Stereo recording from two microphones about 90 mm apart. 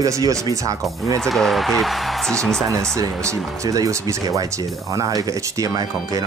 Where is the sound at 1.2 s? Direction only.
5° left (ahead or behind).